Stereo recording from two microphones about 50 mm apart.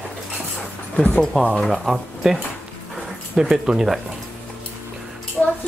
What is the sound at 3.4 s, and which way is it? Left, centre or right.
Speech, centre.